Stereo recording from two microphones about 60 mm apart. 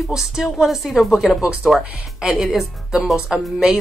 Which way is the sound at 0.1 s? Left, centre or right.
Centre.